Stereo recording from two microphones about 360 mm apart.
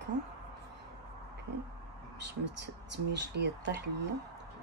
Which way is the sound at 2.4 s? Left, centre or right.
Right.